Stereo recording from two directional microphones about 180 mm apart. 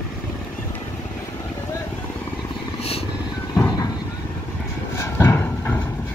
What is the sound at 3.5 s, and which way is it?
Vehicle, 20° left (ahead or behind).